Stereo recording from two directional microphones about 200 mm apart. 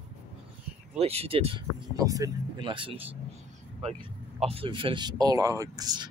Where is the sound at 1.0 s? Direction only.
30° right (ahead or behind).